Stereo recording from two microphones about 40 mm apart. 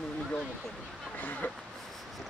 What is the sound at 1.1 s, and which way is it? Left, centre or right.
Speech, left.